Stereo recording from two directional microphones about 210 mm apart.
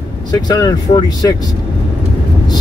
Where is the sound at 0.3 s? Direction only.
15° left (ahead or behind).